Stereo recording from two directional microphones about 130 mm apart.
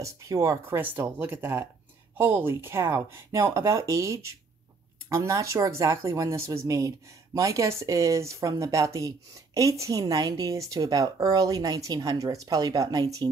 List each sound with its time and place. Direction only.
0.0 s speech: 25° right (ahead or behind)